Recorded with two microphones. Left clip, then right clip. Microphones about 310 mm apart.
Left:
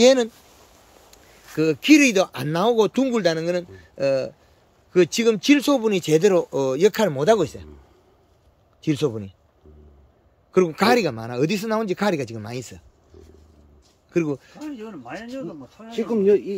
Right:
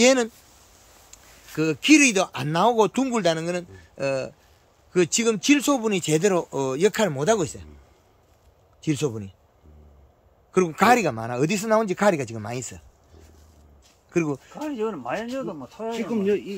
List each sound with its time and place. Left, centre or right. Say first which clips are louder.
0.0 s speech: left 3 dB; centre
8.8 s speech: left 3 dB; centre
10.5 s speech: even; centre
14.1 s speech: left 2 dB; centre
14.6 s speech: right 7 dB; centre
16.0 s speech: left 7 dB; centre